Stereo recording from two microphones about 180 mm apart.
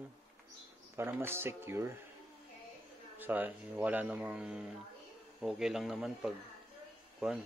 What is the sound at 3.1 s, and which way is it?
Speech, 10° right (ahead or behind).